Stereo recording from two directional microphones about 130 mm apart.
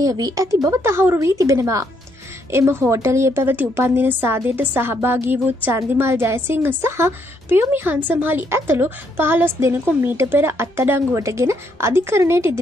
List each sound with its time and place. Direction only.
0.0 s a woman's voice: 25° right (ahead or behind)